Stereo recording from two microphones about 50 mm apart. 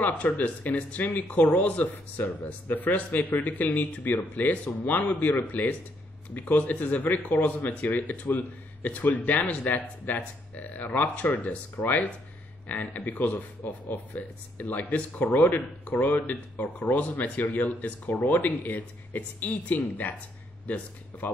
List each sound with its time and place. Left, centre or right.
0.0 s speech: left